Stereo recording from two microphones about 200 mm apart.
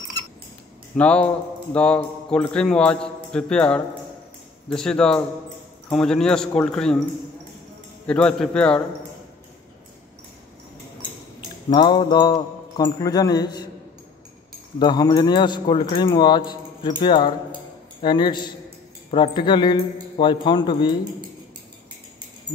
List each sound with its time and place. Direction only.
0.9 s a man's voice: 5° left (ahead or behind)
8.1 s a man's voice: 5° left (ahead or behind)
11.7 s speech: 20° left (ahead or behind)
14.8 s speech: 20° left (ahead or behind)